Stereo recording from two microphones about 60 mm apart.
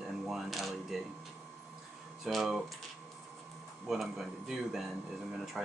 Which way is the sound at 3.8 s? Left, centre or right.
Centre.